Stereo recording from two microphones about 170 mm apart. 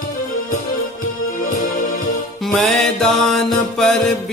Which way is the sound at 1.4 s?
55° left (ahead or behind).